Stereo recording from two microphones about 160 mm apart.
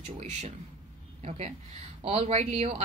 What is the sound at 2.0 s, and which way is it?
Speech, 45° right (ahead or behind).